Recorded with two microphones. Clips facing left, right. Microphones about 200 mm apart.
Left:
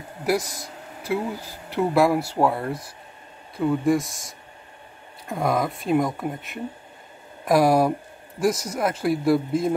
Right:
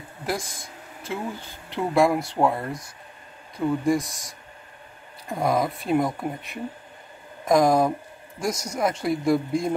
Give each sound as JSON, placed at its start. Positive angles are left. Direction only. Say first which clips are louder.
{"t": 0.4, "sound": "a sound", "louder": "left 3 dB", "side_deg": 35}
{"t": 1.7, "sound": "speech", "louder": "left 1 dB", "side_deg": 5}
{"t": 5.3, "sound": "speech", "louder": "even", "side_deg": 0}